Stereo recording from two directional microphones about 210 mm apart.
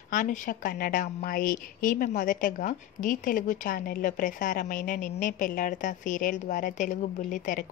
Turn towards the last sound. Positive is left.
turn(degrees=40)  # may be behind; listen again after turning